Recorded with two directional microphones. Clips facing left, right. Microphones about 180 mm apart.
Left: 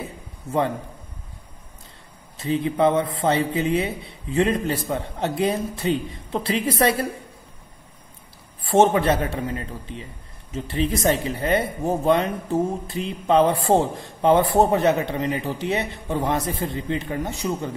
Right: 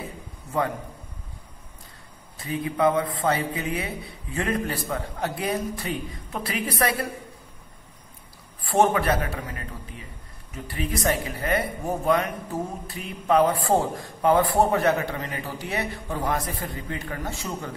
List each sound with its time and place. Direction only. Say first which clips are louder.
2.3 s a man's voice: left 5 dB; 25° left (ahead or behind)
8.6 s a man's voice: left 4 dB; 25° left (ahead or behind)